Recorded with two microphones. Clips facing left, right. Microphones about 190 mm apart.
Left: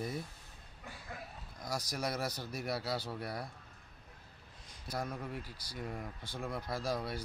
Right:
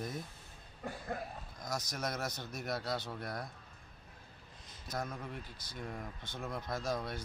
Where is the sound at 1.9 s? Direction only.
10° left (ahead or behind).